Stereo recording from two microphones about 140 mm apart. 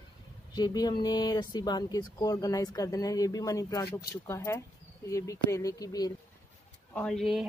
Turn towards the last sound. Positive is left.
turn(degrees=0)  # may be behind; listen again after turning